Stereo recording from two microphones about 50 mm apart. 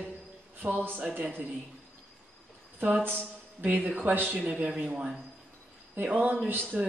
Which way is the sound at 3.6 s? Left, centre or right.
Right.